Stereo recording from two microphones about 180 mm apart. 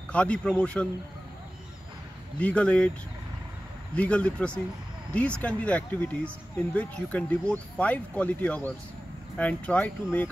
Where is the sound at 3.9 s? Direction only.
5° left (ahead or behind).